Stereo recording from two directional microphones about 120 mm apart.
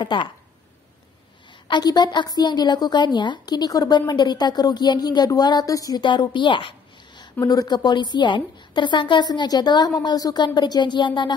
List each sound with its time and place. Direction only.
0.0 s speech: 40° left (ahead or behind)
1.7 s a woman's voice: 35° left (ahead or behind)
7.2 s a woman's voice: 30° left (ahead or behind)